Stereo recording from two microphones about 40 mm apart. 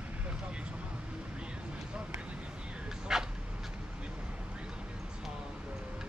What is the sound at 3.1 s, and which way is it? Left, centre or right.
Dog, centre.